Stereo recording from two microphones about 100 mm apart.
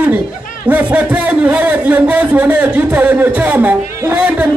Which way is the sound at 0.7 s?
15° right (ahead or behind).